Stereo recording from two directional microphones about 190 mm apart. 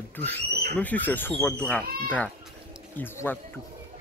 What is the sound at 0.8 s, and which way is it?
Speech, 10° left (ahead or behind).